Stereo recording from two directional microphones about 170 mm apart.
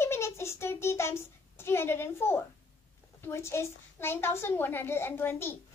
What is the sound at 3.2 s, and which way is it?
A woman's voice, 15° left (ahead or behind).